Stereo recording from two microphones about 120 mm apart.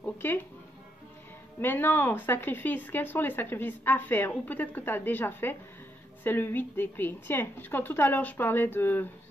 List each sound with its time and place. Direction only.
0.0 s music: 15° left (ahead or behind)
1.6 s a woman's voice: 15° left (ahead or behind)